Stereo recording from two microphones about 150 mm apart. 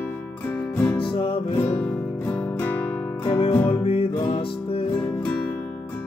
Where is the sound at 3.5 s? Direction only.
15° left (ahead or behind).